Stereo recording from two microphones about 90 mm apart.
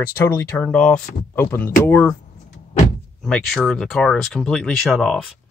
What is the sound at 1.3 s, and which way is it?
Speech, 25° left (ahead or behind).